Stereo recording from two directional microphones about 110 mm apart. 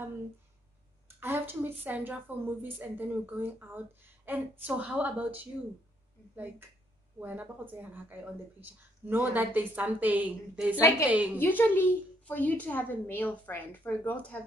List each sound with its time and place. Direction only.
1.0 s speech: 20° right (ahead or behind)
7.2 s speech: 15° right (ahead or behind)
11.3 s a woman's voice: 20° left (ahead or behind)